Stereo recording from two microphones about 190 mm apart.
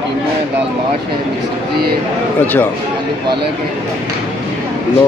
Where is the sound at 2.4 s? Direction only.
10° left (ahead or behind).